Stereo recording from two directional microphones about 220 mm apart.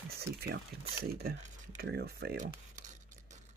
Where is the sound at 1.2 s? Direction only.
45° right (ahead or behind).